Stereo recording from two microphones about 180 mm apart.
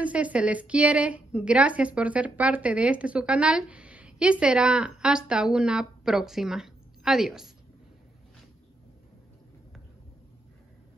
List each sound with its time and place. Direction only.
0.0 s a woman's voice: 10° right (ahead or behind)